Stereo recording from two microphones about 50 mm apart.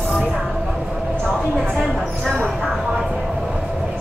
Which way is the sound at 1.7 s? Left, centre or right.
Centre.